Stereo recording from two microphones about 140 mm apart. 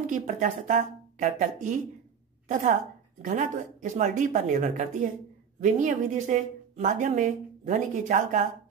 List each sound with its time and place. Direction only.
0.0 s a woman's voice: 65° right (ahead or behind)